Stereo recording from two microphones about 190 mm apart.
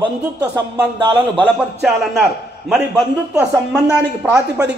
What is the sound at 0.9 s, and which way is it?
Speech, 25° right (ahead or behind).